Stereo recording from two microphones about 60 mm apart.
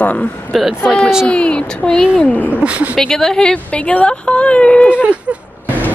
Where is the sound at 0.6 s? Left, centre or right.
Centre.